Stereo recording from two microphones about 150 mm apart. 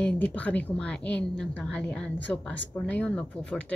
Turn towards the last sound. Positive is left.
turn(degrees=10)  # may be behind; listen again after turning